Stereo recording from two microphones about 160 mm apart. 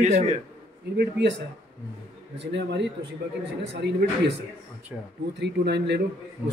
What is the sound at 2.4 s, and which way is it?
Speech, 90° right.